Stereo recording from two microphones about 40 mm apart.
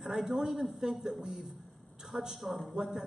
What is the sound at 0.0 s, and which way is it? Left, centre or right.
A man's voice, centre.